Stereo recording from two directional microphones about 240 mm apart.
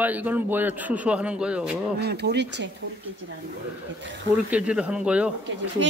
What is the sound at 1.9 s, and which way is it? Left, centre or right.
Speech, right.